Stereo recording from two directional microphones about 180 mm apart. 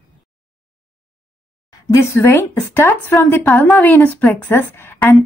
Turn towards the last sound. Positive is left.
turn(degrees=10)  # may be behind; listen again after turning